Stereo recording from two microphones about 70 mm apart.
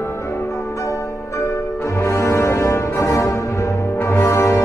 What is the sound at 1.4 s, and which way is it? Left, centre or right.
Music, left.